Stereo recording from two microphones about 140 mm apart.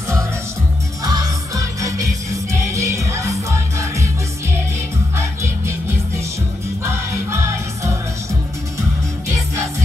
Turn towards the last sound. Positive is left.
turn(degrees=-20)  # may be behind; listen again after turning